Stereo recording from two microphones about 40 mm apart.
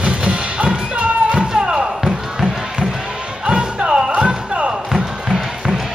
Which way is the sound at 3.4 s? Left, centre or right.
Right.